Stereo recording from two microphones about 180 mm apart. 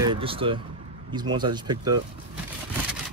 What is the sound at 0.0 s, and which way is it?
Speech, 30° right (ahead or behind).